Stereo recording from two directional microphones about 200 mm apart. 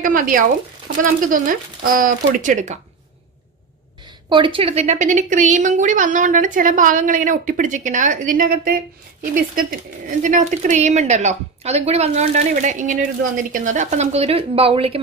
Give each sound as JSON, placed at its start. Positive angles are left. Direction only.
{"t": 0.0, "sound": "a woman's voice", "side_deg": -40}
{"t": 4.3, "sound": "a woman's voice", "side_deg": -25}